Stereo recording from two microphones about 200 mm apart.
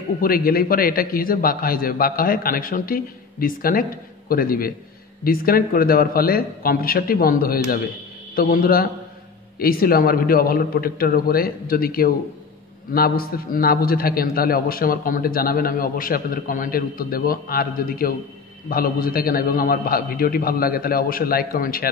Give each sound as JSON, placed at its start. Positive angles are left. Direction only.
{"t": 0.2, "sound": "a man's voice", "side_deg": 45}